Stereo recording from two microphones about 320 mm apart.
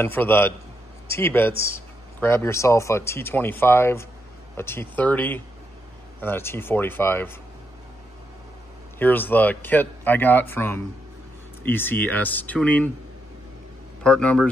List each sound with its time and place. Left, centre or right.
0.0 s speech: centre
8.9 s speech: centre
14.0 s speech: centre